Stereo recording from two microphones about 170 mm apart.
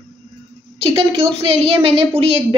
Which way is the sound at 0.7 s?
35° right (ahead or behind).